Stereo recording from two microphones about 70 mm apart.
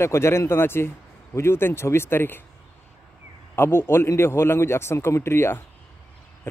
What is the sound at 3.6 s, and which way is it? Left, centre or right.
Speech, left.